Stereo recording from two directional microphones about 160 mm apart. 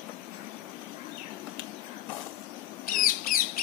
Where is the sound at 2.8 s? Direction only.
60° left (ahead or behind).